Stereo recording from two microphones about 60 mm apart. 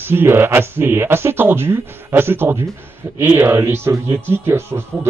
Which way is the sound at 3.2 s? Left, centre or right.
Right.